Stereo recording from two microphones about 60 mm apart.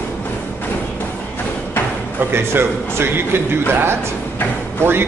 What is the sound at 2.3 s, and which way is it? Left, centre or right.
A man's voice, right.